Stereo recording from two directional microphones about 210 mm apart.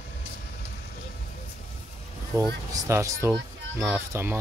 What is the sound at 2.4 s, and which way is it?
Speech, 15° right (ahead or behind).